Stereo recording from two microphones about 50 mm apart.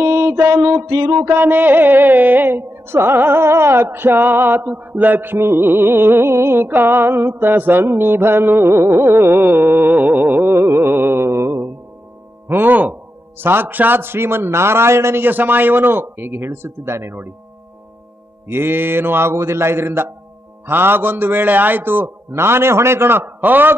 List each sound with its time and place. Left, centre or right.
0.0 s mantra: right
1.3 s carnatic music: right
12.4 s speech: right
13.4 s carnatic music: right
15.2 s carnatic music: right
18.5 s carnatic music: right
19.3 s a man's voice: right
20.6 s carnatic music: right